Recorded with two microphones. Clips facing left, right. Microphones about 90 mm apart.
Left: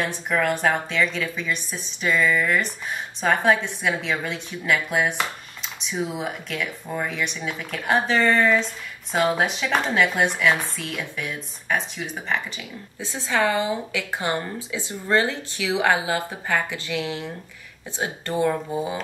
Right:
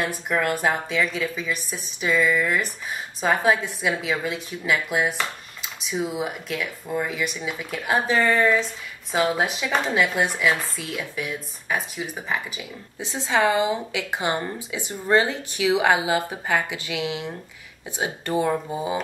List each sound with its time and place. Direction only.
0.0 s a woman's voice: 10° right (ahead or behind)
13.0 s a woman's voice: 20° right (ahead or behind)